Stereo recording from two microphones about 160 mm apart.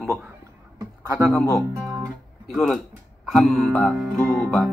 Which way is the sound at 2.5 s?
5° left (ahead or behind).